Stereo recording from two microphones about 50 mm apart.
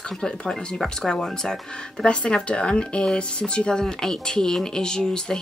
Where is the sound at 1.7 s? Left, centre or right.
Left.